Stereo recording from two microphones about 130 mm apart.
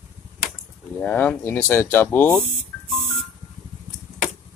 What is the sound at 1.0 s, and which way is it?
Speech, 10° left (ahead or behind).